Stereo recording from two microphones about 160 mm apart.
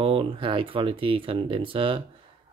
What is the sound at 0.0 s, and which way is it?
Speech, 35° right (ahead or behind).